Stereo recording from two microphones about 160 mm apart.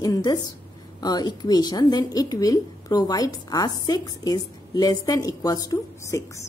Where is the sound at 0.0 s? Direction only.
25° left (ahead or behind).